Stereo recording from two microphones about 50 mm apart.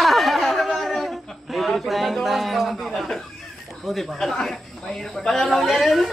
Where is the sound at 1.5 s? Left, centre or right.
Centre.